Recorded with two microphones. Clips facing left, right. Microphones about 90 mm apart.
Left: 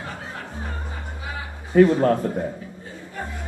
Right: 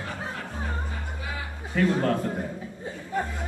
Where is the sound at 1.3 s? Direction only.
25° left (ahead or behind).